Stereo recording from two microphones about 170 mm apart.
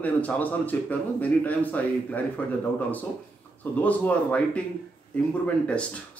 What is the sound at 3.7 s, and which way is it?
Speech, 10° left (ahead or behind).